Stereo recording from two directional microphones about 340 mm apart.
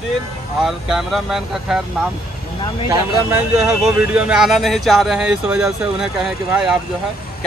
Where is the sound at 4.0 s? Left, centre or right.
Centre.